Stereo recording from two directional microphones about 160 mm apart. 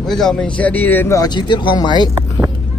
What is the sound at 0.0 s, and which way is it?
Speech, 5° left (ahead or behind).